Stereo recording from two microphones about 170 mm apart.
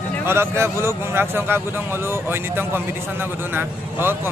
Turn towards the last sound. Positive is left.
turn(degrees=-15)  # may be behind; listen again after turning